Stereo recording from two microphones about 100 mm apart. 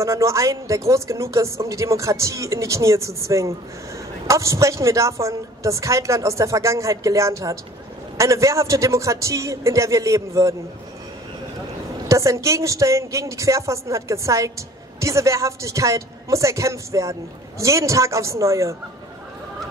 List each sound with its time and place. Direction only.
0.0 s a woman's voice: 30° right (ahead or behind)
12.1 s a woman's voice: 30° right (ahead or behind)